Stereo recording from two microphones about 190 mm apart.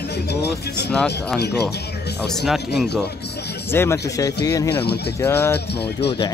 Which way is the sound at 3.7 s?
15° left (ahead or behind).